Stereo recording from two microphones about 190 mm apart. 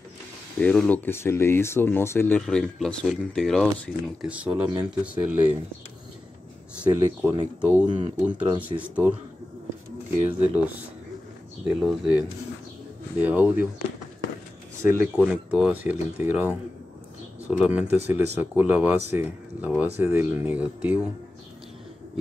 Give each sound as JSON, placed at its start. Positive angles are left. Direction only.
{"t": 0.6, "sound": "speech", "side_deg": 5}
{"t": 6.8, "sound": "speech", "side_deg": -10}
{"t": 7.8, "sound": "speech", "side_deg": -25}
{"t": 8.3, "sound": "speech", "side_deg": -5}
{"t": 10.4, "sound": "speech", "side_deg": -10}
{"t": 11.8, "sound": "speech", "side_deg": -5}
{"t": 14.8, "sound": "speech", "side_deg": -10}